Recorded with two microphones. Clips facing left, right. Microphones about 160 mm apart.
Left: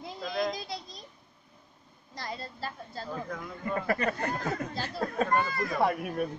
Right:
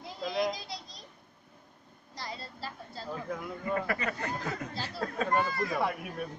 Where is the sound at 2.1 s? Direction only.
50° left (ahead or behind).